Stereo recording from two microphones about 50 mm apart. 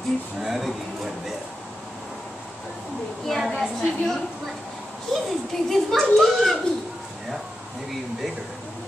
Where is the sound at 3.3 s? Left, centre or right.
Centre.